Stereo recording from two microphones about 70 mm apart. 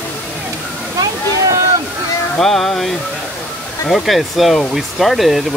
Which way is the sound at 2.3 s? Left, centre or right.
Centre.